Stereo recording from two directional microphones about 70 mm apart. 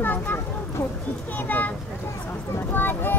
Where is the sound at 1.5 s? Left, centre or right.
Left.